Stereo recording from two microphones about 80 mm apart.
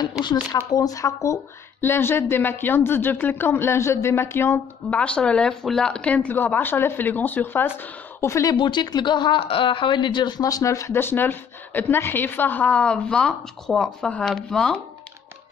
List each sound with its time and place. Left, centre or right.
0.2 s speech: left
4.9 s speech: centre; by 8.5 s left
8.5 s speech: left; by 14.8 s centre